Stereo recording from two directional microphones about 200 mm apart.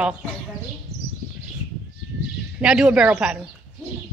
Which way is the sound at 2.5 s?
5° right (ahead or behind).